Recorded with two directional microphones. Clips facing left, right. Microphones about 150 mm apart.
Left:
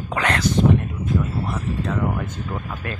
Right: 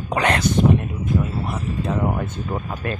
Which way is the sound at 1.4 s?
20° right (ahead or behind).